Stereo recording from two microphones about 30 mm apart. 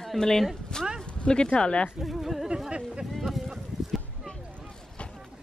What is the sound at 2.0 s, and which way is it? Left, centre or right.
Speech, centre.